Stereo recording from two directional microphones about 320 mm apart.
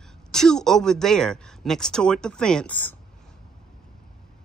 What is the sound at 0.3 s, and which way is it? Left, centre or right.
Speech, centre.